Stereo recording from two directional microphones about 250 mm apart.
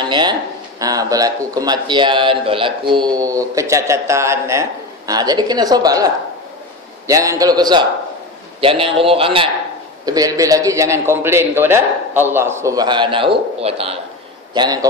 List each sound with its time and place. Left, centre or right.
0.0 s a man's voice: centre